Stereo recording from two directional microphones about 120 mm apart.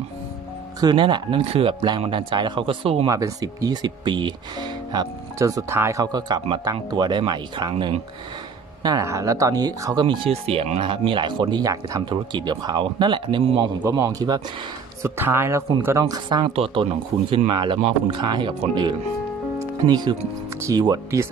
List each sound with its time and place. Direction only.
0.7 s speech: 40° right (ahead or behind)
3.1 s speech: 30° right (ahead or behind)
4.9 s speech: 30° right (ahead or behind)
8.8 s speech: 30° right (ahead or behind)
12.0 s speech: 40° right (ahead or behind)
13.8 s a man's voice: 25° right (ahead or behind)
15.0 s a man's voice: 20° right (ahead or behind)
16.3 s speech: 40° right (ahead or behind)
16.5 s speech: 50° right (ahead or behind); by 21.2 s 30° right (ahead or behind)